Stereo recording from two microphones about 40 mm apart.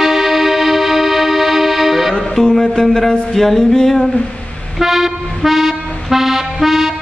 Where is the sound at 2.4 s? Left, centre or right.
Centre.